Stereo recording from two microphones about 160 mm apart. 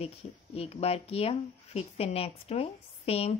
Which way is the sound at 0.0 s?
40° left (ahead or behind).